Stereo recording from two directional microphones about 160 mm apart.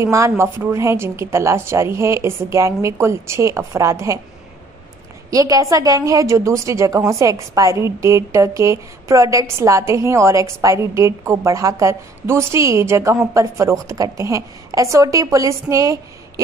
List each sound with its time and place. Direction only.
0.0 s a woman's voice: 20° right (ahead or behind)
5.3 s a woman's voice: 20° right (ahead or behind)